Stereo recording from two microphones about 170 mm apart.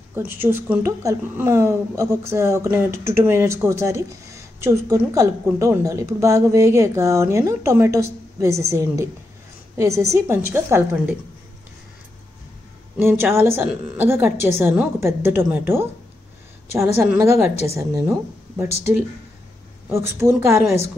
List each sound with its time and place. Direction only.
0.4 s a woman's voice: 15° right (ahead or behind)
13.0 s a woman's voice: 15° right (ahead or behind)
19.9 s a woman's voice: 15° right (ahead or behind)